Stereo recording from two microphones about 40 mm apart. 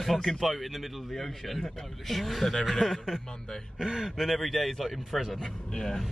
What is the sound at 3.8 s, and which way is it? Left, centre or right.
Speech, centre.